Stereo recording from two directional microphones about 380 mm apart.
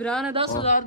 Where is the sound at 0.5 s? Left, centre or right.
Centre.